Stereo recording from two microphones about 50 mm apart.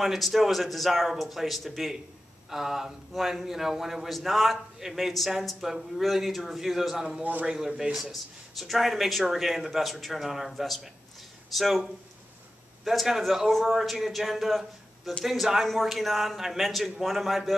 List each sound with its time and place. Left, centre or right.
0.0 s a man's voice: centre